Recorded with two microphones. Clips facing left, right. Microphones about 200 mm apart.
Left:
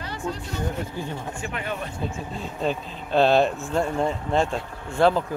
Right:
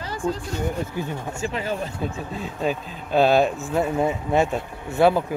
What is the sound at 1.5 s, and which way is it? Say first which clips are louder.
Speech: right 3 dB; 30° right (ahead or behind).